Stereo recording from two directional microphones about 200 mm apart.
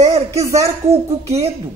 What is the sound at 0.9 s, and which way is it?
Speech, 30° right (ahead or behind).